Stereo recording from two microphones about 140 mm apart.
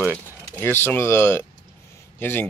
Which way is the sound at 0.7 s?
15° left (ahead or behind).